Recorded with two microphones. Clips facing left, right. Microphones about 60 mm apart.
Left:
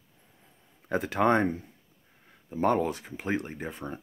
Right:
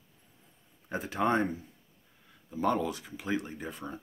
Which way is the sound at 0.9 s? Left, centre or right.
Left.